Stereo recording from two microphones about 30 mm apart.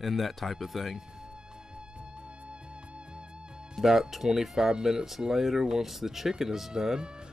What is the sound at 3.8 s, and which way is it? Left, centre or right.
Speech, centre.